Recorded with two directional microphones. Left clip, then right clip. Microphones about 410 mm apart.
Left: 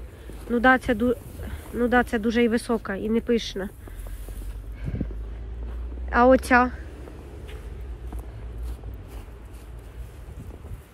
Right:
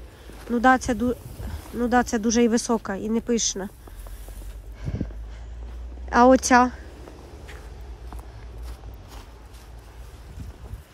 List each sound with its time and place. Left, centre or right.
0.4 s speech: centre
6.0 s speech: centre